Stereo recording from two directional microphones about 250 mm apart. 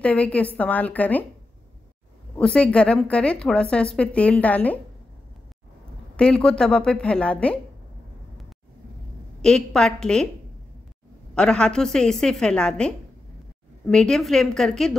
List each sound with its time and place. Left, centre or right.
0.0 s a woman's voice: centre
2.3 s a woman's voice: centre
6.1 s a woman's voice: centre
9.7 s a woman's voice: centre
11.3 s a woman's voice: centre